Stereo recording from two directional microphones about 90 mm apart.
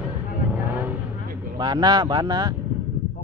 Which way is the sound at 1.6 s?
50° right (ahead or behind).